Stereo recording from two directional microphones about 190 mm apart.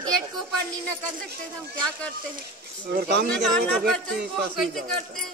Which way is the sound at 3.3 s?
5° left (ahead or behind).